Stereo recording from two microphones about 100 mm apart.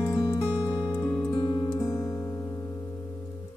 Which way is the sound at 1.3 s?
50° left (ahead or behind).